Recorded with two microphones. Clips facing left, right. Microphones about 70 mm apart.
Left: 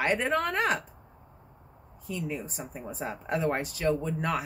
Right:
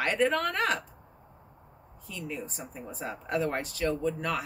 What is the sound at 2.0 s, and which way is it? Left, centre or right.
Speech, centre.